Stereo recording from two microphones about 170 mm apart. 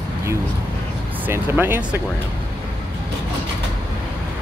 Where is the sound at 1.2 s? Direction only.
10° right (ahead or behind).